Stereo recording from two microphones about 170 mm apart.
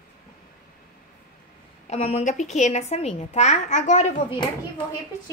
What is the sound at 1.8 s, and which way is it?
A woman's voice, 40° left (ahead or behind).